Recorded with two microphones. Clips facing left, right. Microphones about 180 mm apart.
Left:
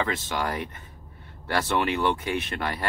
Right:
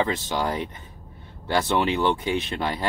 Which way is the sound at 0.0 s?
20° right (ahead or behind).